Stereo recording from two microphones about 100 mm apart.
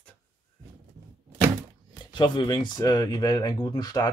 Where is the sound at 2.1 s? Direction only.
50° left (ahead or behind).